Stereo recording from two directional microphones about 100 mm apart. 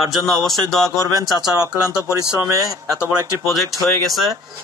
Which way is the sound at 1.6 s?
35° right (ahead or behind).